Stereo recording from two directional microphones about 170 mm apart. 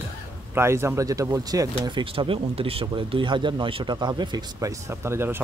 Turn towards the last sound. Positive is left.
turn(degrees=-15)  # may be behind; listen again after turning